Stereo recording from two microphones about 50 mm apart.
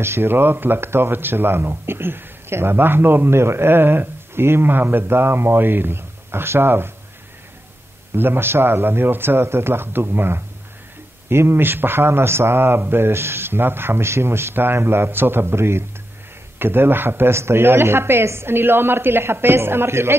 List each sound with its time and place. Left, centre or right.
0.0 s speech: right
8.2 s speech: right
17.3 s speech: right